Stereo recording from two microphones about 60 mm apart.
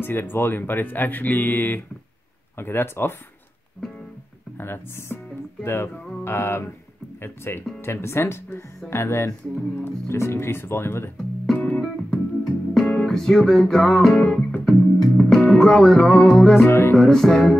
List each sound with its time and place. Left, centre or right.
0.0 s speech: left
4.6 s speech: left
11.5 s music: centre
12.7 s music: centre
16.6 s speech: left
16.9 s music: centre